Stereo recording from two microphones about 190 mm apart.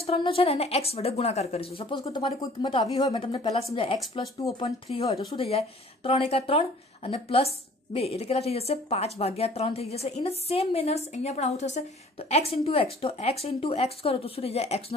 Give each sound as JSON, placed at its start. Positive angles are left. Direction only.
{"t": 0.0, "sound": "speech", "side_deg": 30}
{"t": 4.6, "sound": "speech", "side_deg": 35}